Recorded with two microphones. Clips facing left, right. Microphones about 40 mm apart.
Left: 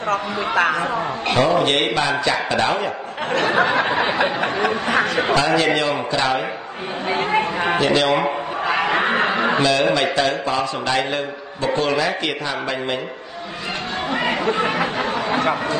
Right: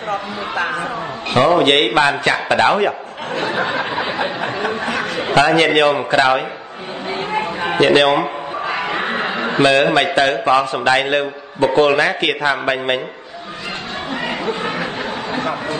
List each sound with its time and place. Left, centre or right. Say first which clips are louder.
1.3 s a man's voice: right 5 dB; right
3.4 s a sound: left 2 dB; left
5.3 s a man's voice: right 7 dB; right
7.1 s chatter: left 2 dB; left
7.7 s a man's voice: right 6 dB; right
9.0 s snicker: left 2 dB; left
9.6 s a man's voice: right 8 dB; right
14.1 s chatter: left 2 dB; left
14.5 s a sound: left 2 dB; left